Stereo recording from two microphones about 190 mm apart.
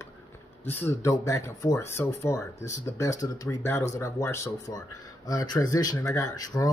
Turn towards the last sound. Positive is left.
turn(degrees=20)  # may be behind; listen again after turning